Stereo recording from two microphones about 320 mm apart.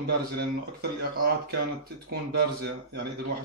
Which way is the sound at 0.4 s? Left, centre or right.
Right.